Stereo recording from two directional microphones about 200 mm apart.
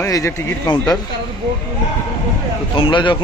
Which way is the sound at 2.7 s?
25° left (ahead or behind).